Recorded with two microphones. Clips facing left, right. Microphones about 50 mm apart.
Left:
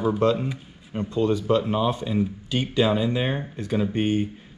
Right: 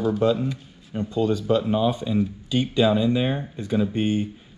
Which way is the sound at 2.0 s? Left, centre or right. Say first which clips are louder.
Right 1 dB; left.